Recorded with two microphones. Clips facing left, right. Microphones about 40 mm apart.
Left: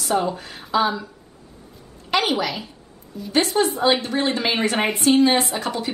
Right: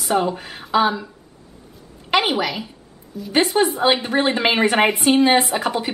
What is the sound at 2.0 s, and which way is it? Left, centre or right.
A woman's voice, right.